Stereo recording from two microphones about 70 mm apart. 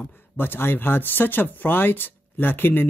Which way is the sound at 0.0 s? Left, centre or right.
Left.